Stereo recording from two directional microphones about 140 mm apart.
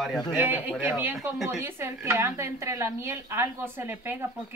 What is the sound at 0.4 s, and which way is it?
Speech, 10° right (ahead or behind).